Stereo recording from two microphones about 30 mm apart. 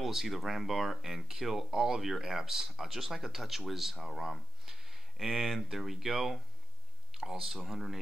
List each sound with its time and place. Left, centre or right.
0.0 s speech: centre
1.7 s speech: centre
2.0 s speech: centre